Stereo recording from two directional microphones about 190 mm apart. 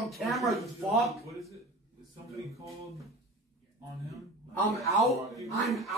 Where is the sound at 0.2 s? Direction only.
Centre (ahead or behind).